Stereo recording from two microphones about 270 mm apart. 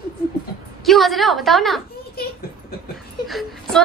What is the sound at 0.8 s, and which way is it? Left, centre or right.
Speech, centre.